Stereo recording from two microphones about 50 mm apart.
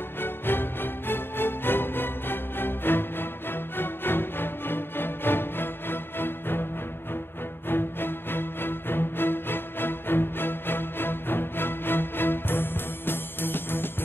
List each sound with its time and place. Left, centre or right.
0.2 s music: left